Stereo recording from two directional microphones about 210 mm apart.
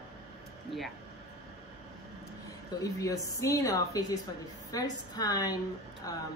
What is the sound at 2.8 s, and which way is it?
A woman's voice, 15° left (ahead or behind).